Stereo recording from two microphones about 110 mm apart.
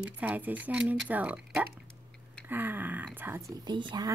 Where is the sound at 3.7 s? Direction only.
45° right (ahead or behind).